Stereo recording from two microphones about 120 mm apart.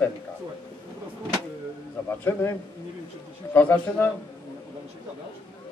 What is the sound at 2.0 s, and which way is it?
Speech, 20° left (ahead or behind).